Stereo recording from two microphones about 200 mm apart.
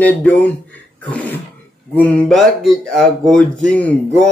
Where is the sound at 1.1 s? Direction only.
10° left (ahead or behind).